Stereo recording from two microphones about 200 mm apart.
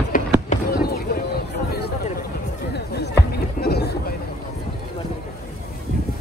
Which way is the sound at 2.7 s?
55° left (ahead or behind).